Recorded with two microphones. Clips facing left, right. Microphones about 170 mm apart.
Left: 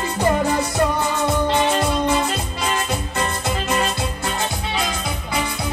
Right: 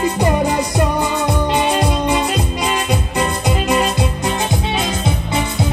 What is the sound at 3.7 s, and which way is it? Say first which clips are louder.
Music: right 5 dB; 15° right (ahead or behind).